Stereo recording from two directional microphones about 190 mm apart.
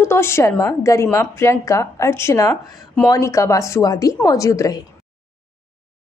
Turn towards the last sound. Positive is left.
turn(degrees=15)  # may be behind; listen again after turning